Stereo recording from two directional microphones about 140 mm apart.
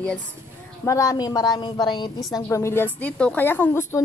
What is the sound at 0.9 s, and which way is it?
A woman's voice, 25° left (ahead or behind).